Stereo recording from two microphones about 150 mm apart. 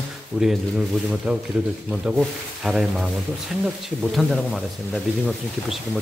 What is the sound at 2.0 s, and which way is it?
Speech, 5° right (ahead or behind).